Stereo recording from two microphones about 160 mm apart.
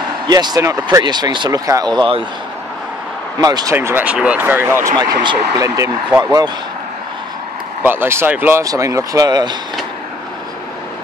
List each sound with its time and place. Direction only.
0.3 s speech: 25° right (ahead or behind)
3.3 s speech: 25° right (ahead or behind)
3.7 s speech: 10° right (ahead or behind)
4.9 s speech: 30° right (ahead or behind)
6.0 s speech: 10° right (ahead or behind)
7.8 s speech: 15° right (ahead or behind)